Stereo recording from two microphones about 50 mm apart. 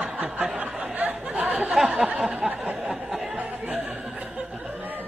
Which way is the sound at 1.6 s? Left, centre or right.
Centre.